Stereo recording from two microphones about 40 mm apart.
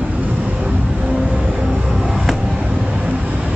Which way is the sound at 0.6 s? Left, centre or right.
Right.